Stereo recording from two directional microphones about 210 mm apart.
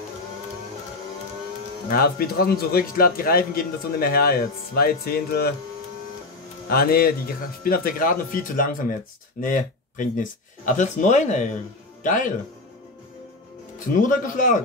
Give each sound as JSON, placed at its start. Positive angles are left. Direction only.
{"t": 1.9, "sound": "speech", "side_deg": 45}
{"t": 6.7, "sound": "speech", "side_deg": 45}
{"t": 13.7, "sound": "speech", "side_deg": 40}